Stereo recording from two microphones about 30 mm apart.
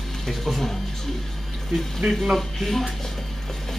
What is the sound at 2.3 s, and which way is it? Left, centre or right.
Speech, centre.